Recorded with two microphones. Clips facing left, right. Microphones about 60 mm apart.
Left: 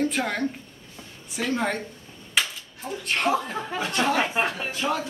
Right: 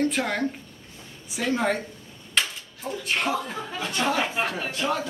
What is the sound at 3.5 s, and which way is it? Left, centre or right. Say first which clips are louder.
Speech: left 3 dB; centre.